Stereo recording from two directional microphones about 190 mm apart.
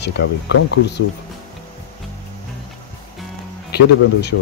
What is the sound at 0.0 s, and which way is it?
Speech, 65° left (ahead or behind).